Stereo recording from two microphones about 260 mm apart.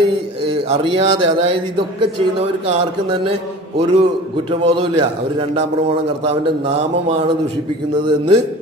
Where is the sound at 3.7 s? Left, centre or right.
Centre.